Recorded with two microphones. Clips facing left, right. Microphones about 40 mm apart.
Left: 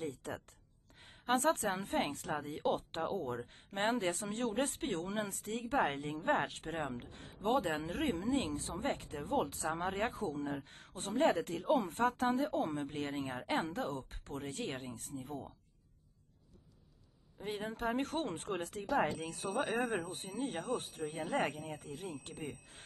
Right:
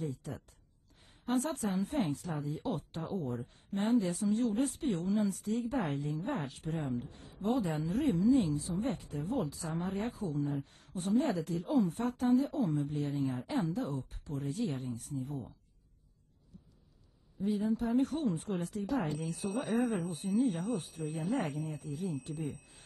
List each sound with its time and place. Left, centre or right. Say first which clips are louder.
0.0 s a woman's voice: right 1 dB; left
17.4 s a woman's voice: right 7 dB; left